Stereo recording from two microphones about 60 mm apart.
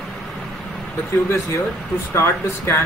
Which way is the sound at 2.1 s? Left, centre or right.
Left.